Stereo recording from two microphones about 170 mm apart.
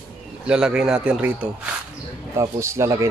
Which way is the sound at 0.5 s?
5° right (ahead or behind).